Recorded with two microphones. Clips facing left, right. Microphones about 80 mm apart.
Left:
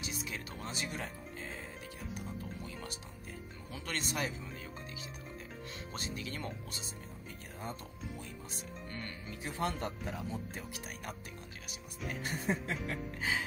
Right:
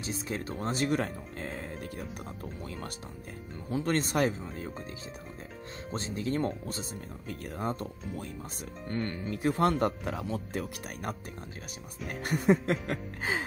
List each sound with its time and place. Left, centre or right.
0.0 s speech: right
3.7 s speech: right
5.9 s speech: right
7.2 s speech: right
12.1 s speech: right
13.2 s speech: right